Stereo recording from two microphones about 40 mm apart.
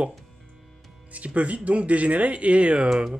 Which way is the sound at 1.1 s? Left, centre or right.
Right.